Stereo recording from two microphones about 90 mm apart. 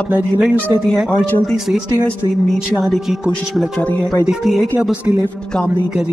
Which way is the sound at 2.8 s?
Centre (ahead or behind).